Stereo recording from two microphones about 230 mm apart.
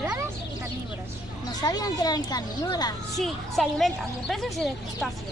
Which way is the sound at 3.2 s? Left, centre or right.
Centre.